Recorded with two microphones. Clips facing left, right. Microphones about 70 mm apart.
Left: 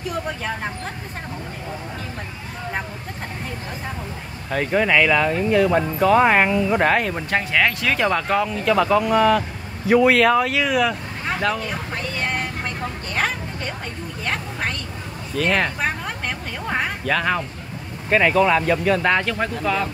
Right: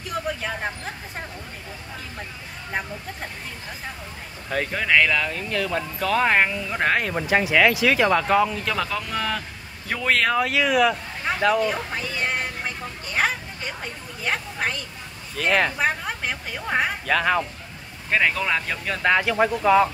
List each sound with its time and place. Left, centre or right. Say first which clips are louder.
0.1 s speech: right 1 dB; centre
4.5 s speech: left 4 dB; centre
5.2 s speech: left 9 dB; centre
6.3 s speech: left 4 dB; centre
9.8 s a sound: left 8 dB; centre
15.3 s a woman's voice: left 1 dB; centre
19.3 s speech: right 5 dB; centre